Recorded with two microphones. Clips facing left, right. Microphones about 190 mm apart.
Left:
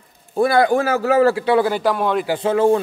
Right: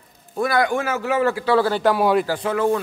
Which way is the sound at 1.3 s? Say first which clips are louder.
Left 2 dB; 20° left (ahead or behind).